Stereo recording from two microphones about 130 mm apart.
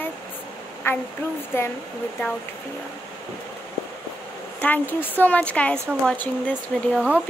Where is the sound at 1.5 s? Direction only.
15° left (ahead or behind).